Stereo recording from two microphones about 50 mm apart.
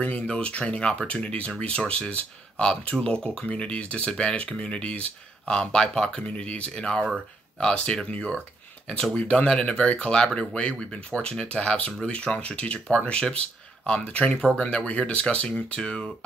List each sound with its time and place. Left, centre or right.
0.3 s speech: left